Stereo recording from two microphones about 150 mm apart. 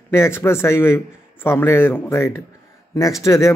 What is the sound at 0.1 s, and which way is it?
A man's voice, 15° left (ahead or behind).